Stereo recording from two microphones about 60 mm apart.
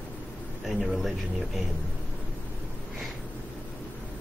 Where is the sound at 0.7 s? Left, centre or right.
Centre.